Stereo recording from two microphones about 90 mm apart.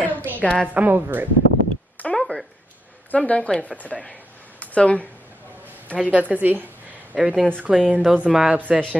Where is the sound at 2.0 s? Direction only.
5° left (ahead or behind).